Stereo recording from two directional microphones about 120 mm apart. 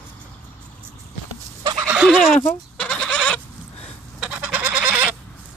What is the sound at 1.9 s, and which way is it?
Goat, centre (ahead or behind).